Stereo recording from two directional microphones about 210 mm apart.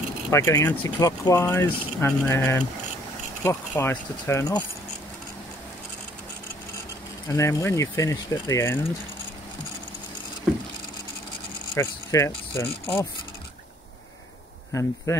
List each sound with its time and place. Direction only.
0.3 s speech: 15° left (ahead or behind)
7.2 s speech: 15° left (ahead or behind)
11.7 s speech: 15° left (ahead or behind)
14.7 s speech: 15° left (ahead or behind)